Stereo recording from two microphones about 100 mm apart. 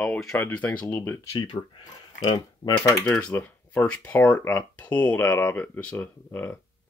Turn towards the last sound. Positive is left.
turn(degrees=20)  # may be behind; listen again after turning